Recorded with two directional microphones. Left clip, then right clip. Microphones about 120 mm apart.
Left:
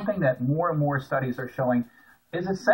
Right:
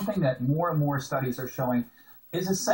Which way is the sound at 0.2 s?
10° right (ahead or behind).